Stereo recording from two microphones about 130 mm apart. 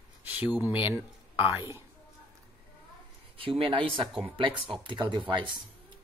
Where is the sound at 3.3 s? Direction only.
45° right (ahead or behind).